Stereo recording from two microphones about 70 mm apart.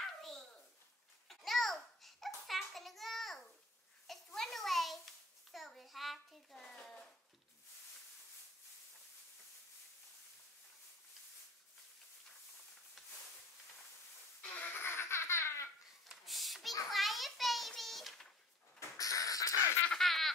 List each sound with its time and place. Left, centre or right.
0.0 s dog: centre
1.3 s babbling: centre
4.1 s a sound: centre
14.4 s baby laughter: left
16.1 s a sound: centre
18.8 s crow: left
20.0 s baby laughter: centre